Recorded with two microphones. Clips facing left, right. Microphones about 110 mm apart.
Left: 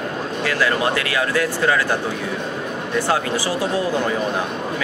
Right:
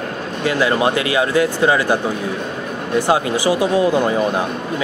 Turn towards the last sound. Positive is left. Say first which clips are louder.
# right 5 dB
turn(degrees=-15)  # may be behind; listen again after turning